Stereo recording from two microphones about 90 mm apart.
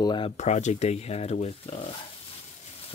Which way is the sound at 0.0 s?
60° left (ahead or behind).